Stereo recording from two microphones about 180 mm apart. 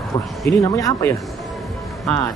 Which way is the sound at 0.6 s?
20° left (ahead or behind).